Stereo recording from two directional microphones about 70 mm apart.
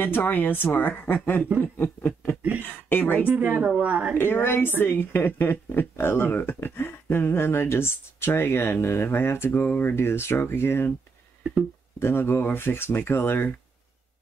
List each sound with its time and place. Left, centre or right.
0.0 s speech: left
3.3 s speech: right
4.1 s a woman's voice: left
12.0 s a woman's voice: left